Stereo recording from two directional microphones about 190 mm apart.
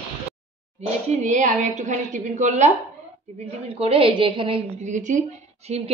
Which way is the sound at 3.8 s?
30° right (ahead or behind).